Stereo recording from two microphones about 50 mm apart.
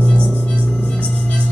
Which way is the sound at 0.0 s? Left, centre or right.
Left.